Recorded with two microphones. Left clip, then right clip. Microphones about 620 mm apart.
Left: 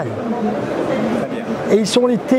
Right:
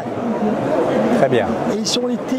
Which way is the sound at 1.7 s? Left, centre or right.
Left.